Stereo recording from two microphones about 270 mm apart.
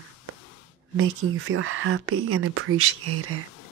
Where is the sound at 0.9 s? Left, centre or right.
Right.